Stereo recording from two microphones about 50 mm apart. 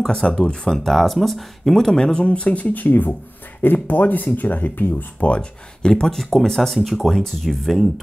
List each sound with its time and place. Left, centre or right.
0.0 s speech: centre
0.3 s speech: left
0.7 s speech: centre
2.0 s speech: centre; by 5.3 s left
5.3 s speech: centre
6.1 s speech: centre